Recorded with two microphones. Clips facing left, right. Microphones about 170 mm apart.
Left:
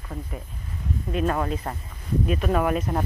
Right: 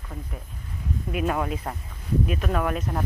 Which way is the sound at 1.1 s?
10° right (ahead or behind).